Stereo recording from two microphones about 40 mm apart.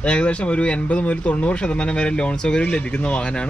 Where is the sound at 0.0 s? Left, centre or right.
Left.